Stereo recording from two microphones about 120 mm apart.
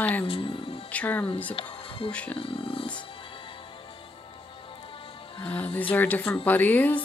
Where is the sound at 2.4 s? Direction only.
50° left (ahead or behind).